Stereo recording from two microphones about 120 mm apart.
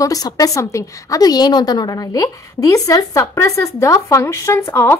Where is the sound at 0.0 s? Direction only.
30° left (ahead or behind).